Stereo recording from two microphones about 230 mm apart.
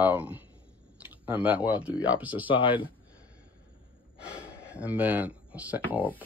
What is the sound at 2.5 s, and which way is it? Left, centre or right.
Speech, left.